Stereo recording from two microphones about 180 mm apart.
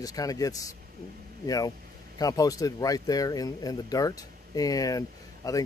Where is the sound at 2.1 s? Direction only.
20° left (ahead or behind).